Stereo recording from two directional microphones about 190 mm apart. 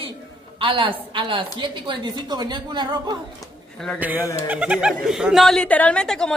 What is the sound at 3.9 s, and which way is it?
Speech, 10° right (ahead or behind).